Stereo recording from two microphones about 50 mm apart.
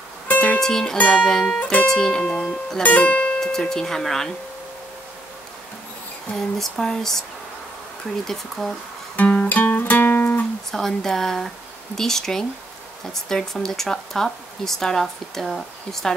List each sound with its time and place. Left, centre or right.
0.3 s music: left
0.6 s speech: centre
1.6 s speech: left
2.8 s speech: left
3.5 s speech: centre
6.3 s speech: centre
8.3 s speech: centre
9.1 s music: left
10.7 s speech: centre